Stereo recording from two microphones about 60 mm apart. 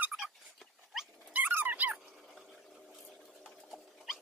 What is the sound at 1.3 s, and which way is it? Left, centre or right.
Dog, right.